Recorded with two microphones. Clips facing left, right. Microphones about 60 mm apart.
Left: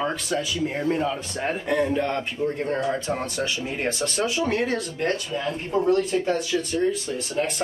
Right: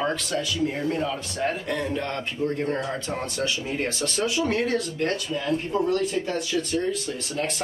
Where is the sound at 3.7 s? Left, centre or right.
Left.